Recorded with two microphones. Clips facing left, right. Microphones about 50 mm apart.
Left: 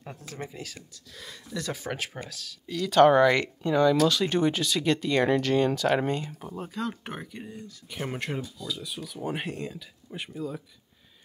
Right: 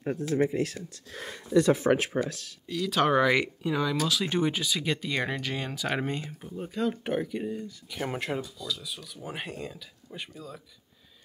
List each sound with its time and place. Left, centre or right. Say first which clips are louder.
0.0 s speech: right 13 dB; right
1.5 s speech: right 12 dB; right
2.6 s speech: left 7 dB; centre
8.4 s speech: even; centre